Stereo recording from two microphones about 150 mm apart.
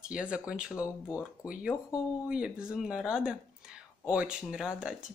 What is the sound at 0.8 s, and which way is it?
Speech, 15° left (ahead or behind).